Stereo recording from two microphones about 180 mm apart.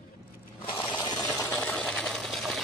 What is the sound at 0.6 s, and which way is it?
Scrape, 30° left (ahead or behind).